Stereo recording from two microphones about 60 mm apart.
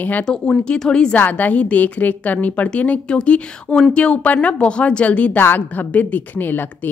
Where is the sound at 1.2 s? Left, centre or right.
Left.